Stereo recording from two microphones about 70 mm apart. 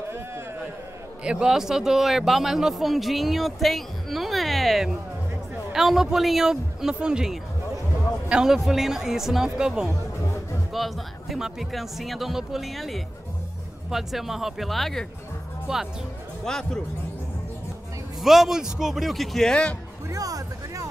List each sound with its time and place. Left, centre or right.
1.2 s a man's voice: centre
15.7 s speech: centre
16.4 s speech: centre
18.2 s a man's voice: centre
20.1 s speech: right